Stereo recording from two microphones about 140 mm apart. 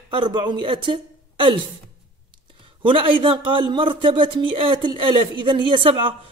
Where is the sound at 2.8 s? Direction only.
40° right (ahead or behind).